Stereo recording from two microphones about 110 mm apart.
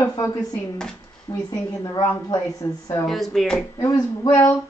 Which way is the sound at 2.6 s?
20° left (ahead or behind).